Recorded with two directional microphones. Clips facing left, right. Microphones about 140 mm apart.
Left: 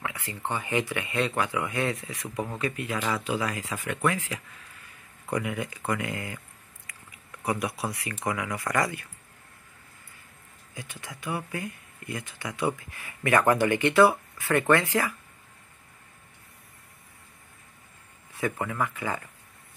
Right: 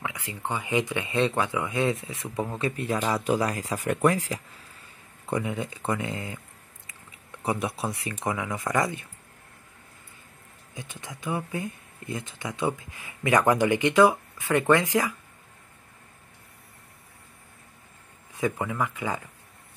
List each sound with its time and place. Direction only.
0.0 s speech: 15° right (ahead or behind); by 4.4 s 40° right (ahead or behind)
4.8 s speech: 25° right (ahead or behind)
7.4 s speech: 25° right (ahead or behind)
10.7 s speech: 20° right (ahead or behind)
18.3 s speech: 15° right (ahead or behind)